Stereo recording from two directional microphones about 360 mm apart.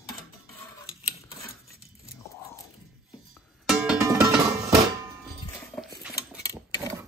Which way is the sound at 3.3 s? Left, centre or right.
Centre.